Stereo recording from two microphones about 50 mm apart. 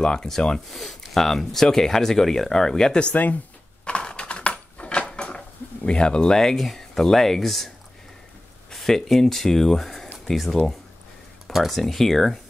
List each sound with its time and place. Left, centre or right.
0.0 s speech: centre
0.7 s speech: centre
3.8 s a sound: centre
5.9 s speech: centre
8.7 s speech: centre